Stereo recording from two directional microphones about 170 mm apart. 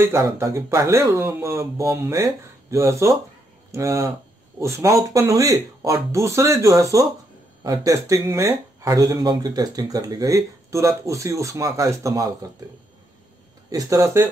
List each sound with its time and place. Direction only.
0.0 s speech: 15° right (ahead or behind)
13.7 s speech: 20° right (ahead or behind)